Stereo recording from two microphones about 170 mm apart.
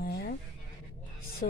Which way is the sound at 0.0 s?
70° left (ahead or behind).